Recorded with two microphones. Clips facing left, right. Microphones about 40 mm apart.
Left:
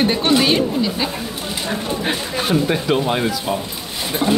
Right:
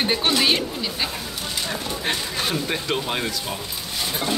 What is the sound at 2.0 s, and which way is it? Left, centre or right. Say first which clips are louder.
Speech: left 3 dB; centre.